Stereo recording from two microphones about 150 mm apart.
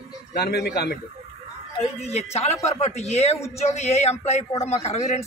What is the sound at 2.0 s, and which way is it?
A man's voice, 45° left (ahead or behind).